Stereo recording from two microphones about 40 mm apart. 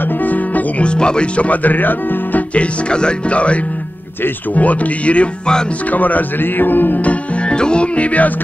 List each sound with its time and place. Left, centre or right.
0.2 s music: left
0.8 s speech: left
2.5 s speech: left
4.6 s speech: left
7.0 s music: left
7.5 s music: left